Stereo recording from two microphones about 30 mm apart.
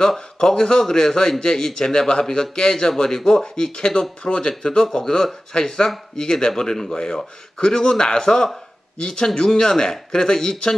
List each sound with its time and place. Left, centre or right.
0.4 s speech: centre
3.2 s speech: centre
3.5 s speech: left